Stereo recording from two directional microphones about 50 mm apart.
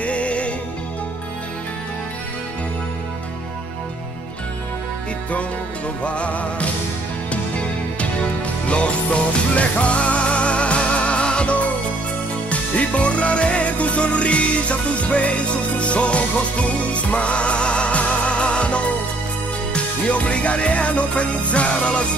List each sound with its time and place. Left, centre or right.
0.0 s music: left
6.0 s music: left
8.6 s music: left